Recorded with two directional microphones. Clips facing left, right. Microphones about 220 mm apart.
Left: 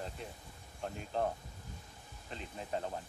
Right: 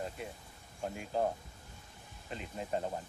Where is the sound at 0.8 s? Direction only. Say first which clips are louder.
Right 2 dB; 5° right (ahead or behind).